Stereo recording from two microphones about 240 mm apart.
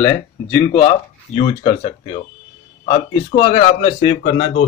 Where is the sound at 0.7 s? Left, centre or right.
Left.